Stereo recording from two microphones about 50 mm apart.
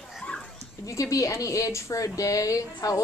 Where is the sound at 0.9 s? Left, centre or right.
Left.